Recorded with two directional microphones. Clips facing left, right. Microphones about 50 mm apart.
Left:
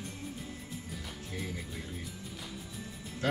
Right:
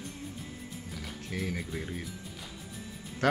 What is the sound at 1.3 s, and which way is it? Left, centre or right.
Speech, right.